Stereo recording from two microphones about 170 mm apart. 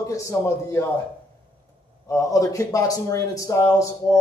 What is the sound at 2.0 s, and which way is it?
A man's voice, 20° left (ahead or behind).